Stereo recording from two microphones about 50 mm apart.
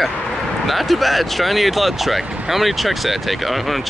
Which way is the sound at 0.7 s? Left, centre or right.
Centre.